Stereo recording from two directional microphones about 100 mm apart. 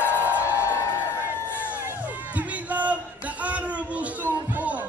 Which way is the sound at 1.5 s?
15° right (ahead or behind).